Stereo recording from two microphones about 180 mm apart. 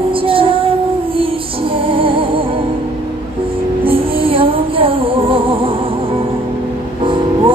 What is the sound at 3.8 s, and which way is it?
Music, 30° right (ahead or behind).